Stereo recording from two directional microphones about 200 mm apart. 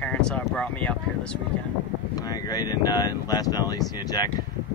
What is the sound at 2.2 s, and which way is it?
Speech, 20° left (ahead or behind).